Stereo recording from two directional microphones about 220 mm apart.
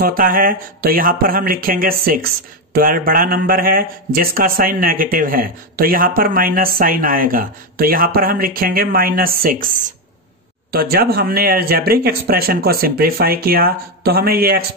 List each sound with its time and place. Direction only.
0.0 s speech: 40° right (ahead or behind)